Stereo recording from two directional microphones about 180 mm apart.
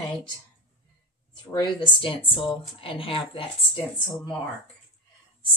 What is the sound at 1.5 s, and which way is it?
Speech, 25° left (ahead or behind).